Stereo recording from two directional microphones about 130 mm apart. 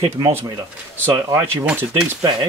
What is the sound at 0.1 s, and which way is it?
Speech, 20° right (ahead or behind).